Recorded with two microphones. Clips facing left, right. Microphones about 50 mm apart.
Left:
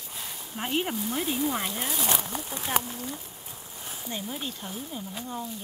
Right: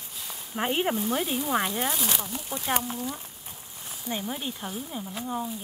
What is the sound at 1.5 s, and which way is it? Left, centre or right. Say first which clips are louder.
Speech: right 5 dB; right.